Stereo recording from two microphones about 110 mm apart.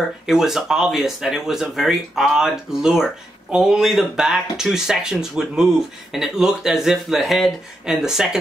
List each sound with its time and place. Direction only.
0.3 s speech: 5° right (ahead or behind)